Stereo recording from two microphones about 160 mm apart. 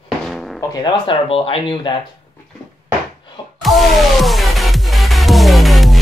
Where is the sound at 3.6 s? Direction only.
Centre (ahead or behind).